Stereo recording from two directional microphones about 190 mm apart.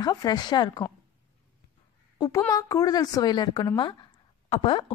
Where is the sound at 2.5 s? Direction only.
20° left (ahead or behind).